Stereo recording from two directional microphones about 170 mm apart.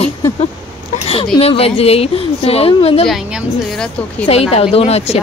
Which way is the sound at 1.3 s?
35° left (ahead or behind).